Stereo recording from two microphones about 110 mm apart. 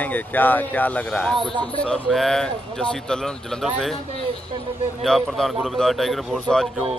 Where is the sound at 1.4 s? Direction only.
45° right (ahead or behind).